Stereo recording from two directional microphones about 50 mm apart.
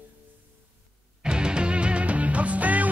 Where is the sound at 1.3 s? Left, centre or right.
Centre.